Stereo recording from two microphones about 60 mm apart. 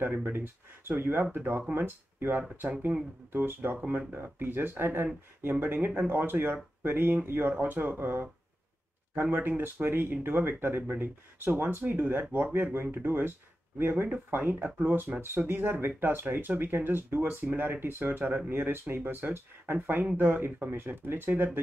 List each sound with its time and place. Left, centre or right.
0.0 s speech: right